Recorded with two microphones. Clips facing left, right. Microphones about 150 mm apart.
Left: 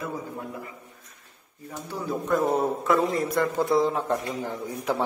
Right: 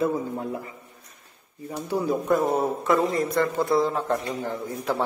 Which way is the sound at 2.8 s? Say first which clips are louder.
Right 1 dB; centre (ahead or behind).